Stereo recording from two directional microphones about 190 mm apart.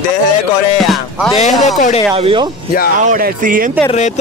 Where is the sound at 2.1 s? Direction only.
30° right (ahead or behind).